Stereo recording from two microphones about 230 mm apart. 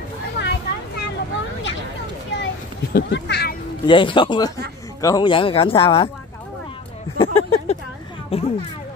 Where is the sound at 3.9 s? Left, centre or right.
Left.